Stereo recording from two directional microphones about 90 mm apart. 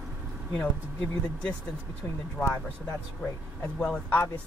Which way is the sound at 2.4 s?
15° left (ahead or behind).